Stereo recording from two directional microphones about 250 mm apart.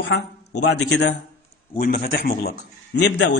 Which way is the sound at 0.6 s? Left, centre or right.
Left.